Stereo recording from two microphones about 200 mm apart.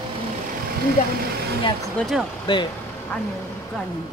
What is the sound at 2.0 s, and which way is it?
Speech, centre (ahead or behind).